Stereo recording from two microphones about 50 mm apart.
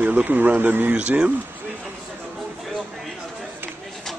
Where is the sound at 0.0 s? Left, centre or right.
Right.